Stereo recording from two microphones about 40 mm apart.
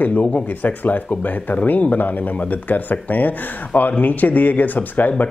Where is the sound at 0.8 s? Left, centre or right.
Left.